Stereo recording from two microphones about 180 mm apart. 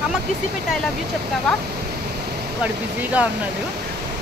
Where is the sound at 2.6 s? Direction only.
10° right (ahead or behind).